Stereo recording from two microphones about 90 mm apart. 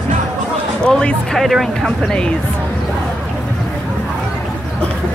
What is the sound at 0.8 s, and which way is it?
Speech, 10° left (ahead or behind).